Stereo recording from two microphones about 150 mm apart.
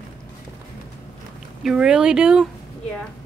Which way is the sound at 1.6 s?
5° right (ahead or behind).